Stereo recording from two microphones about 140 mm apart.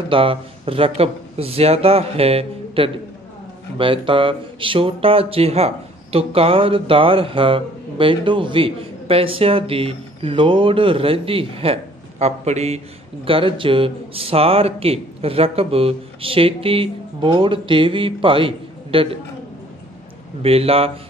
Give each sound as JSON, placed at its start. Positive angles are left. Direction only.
{"t": 0.1, "sound": "speech", "side_deg": -40}
{"t": 20.4, "sound": "speech", "side_deg": -45}